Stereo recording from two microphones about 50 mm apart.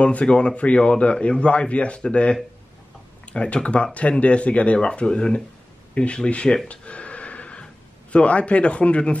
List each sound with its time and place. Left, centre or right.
0.0 s speech: left
3.3 s speech: left
6.7 s a sound: left
7.6 s speech: left